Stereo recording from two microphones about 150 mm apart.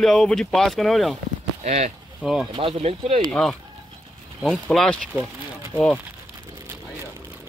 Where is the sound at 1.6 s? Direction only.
50° right (ahead or behind).